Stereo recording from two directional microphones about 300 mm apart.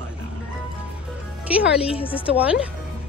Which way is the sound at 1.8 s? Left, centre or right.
Centre.